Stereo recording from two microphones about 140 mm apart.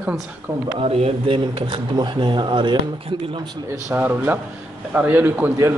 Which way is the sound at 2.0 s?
35° right (ahead or behind).